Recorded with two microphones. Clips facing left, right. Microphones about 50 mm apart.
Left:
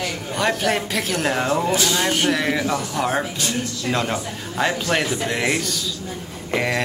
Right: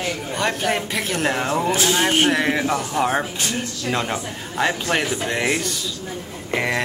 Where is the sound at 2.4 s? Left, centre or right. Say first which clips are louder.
Right 1 dB; centre.